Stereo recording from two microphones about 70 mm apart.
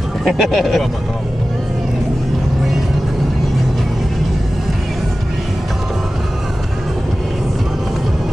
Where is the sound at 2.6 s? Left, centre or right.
Centre.